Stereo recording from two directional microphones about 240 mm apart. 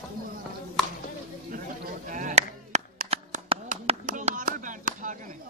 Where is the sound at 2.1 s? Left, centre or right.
Right.